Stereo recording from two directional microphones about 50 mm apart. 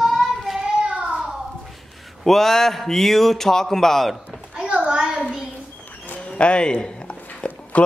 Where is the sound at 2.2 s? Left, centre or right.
Centre.